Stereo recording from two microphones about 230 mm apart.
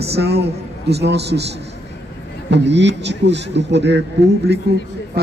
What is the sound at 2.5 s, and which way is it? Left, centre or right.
Speech, right.